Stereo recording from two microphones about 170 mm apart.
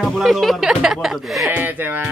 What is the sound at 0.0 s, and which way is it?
Speech, centre (ahead or behind).